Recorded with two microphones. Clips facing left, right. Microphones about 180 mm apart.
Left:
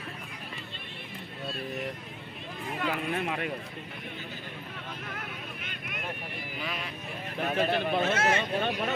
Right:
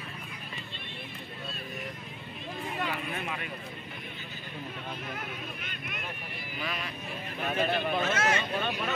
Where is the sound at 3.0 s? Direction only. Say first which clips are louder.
Left 5 dB; 65° left (ahead or behind).